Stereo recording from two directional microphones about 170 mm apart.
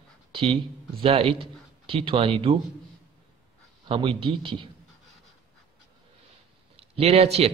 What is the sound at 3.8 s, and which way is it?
Speech, 30° right (ahead or behind).